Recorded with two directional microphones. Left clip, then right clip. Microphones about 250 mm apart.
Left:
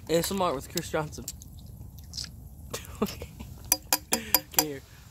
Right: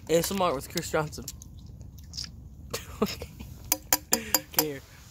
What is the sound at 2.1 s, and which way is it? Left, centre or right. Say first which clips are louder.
Biting: even; centre.